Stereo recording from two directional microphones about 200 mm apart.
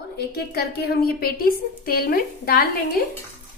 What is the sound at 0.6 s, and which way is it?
Frying, 50° left (ahead or behind).